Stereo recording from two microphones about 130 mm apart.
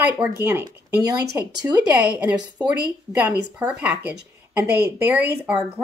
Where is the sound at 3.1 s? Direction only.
10° right (ahead or behind).